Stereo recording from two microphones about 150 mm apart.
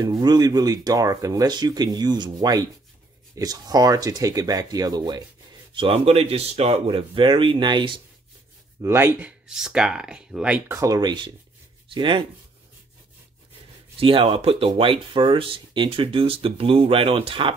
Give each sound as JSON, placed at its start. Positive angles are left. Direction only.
{"t": 0.0, "sound": "speech", "side_deg": -25}
{"t": 5.8, "sound": "speech", "side_deg": -40}
{"t": 8.8, "sound": "speech", "side_deg": -15}
{"t": 9.5, "sound": "speech", "side_deg": -5}
{"t": 10.7, "sound": "speech", "side_deg": -20}
{"t": 13.9, "sound": "speech", "side_deg": -40}